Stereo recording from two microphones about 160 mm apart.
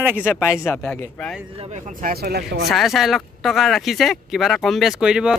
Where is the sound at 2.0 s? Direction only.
80° right.